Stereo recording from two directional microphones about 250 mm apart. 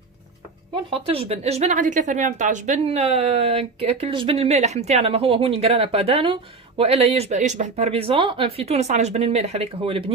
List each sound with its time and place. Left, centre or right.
1.0 s a woman's voice: right